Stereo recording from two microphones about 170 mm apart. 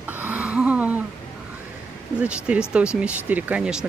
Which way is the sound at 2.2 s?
5° right (ahead or behind).